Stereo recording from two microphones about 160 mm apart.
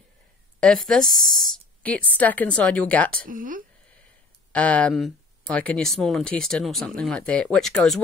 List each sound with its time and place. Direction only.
0.6 s speech: 5° left (ahead or behind)
3.2 s speech: 55° right (ahead or behind)
4.5 s speech: 10° left (ahead or behind)